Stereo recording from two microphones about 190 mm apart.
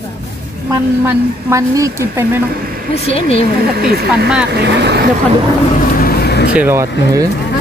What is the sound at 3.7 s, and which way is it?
Speech, 55° right (ahead or behind).